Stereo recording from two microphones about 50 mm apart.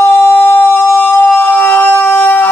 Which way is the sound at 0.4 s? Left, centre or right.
Left.